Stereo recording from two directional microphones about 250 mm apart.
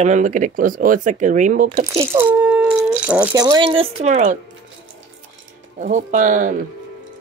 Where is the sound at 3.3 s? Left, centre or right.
Centre.